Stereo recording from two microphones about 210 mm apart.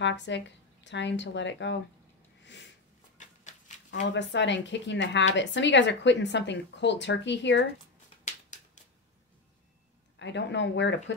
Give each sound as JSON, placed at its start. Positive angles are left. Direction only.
{"t": 0.0, "sound": "speech", "side_deg": 60}
{"t": 2.4, "sound": "a sound", "side_deg": 55}
{"t": 3.2, "sound": "shuffling cards", "side_deg": 35}
{"t": 4.1, "sound": "speech", "side_deg": 60}
{"t": 8.5, "sound": "a sound", "side_deg": 35}
{"t": 10.1, "sound": "speech", "side_deg": 60}